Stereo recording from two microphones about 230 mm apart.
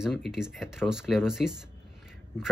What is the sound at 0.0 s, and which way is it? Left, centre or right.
Speech, centre.